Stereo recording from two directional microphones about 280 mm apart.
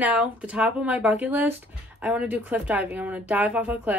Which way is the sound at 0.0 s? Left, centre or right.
Centre.